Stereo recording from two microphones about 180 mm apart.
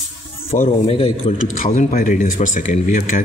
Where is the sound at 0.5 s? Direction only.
45° left (ahead or behind).